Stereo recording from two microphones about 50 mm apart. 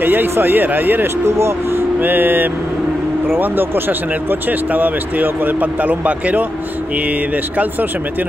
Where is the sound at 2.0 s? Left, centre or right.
Right.